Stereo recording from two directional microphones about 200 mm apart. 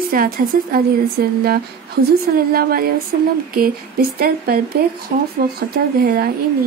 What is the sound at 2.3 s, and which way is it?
Speech, 50° right (ahead or behind).